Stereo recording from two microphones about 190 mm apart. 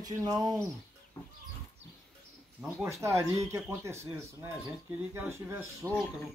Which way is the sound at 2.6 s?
10° right (ahead or behind).